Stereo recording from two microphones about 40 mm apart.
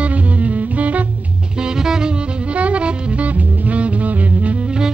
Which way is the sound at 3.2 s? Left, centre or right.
Right.